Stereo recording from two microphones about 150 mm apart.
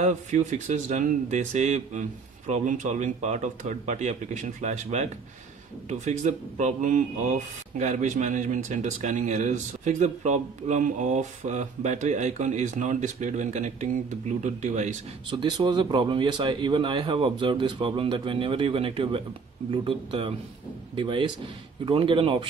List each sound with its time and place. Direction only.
0.0 s speech: 50° right (ahead or behind)
15.2 s speech: 30° right (ahead or behind)